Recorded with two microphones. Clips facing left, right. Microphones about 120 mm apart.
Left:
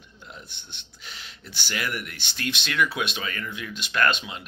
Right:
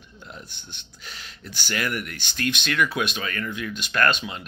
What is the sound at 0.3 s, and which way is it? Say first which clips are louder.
Speech: right 2 dB; 20° left (ahead or behind).